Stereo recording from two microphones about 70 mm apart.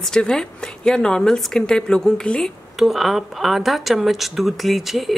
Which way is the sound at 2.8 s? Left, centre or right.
Centre.